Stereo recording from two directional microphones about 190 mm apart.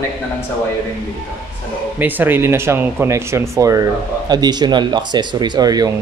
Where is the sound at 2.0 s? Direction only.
10° right (ahead or behind).